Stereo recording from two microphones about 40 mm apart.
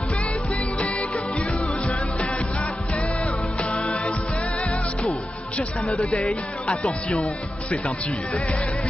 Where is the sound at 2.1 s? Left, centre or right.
Left.